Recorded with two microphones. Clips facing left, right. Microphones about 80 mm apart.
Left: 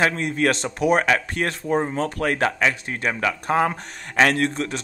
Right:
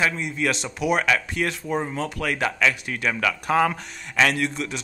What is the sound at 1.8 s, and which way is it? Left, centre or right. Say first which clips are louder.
Speech: left 4 dB; left.